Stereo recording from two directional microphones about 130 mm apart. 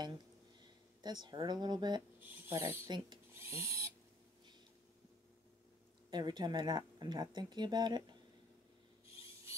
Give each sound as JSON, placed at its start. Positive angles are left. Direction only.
{"t": 1.0, "sound": "speech", "side_deg": -35}
{"t": 2.1, "sound": "speech", "side_deg": -15}
{"t": 3.3, "sound": "owl", "side_deg": -20}
{"t": 6.0, "sound": "speech", "side_deg": -35}